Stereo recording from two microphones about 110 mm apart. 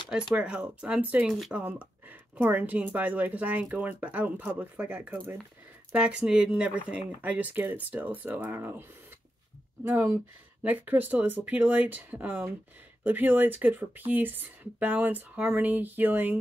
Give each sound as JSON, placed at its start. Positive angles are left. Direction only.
{"t": 0.3, "sound": "speech", "side_deg": -10}
{"t": 1.5, "sound": "speech", "side_deg": -10}
{"t": 9.9, "sound": "speech", "side_deg": -25}